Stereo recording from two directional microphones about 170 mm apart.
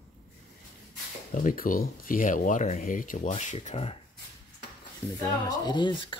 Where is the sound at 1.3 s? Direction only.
50° left (ahead or behind).